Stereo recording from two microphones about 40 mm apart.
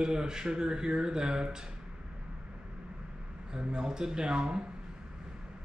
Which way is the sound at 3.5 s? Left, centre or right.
Centre.